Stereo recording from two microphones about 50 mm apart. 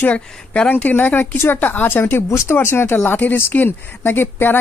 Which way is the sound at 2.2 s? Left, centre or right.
Left.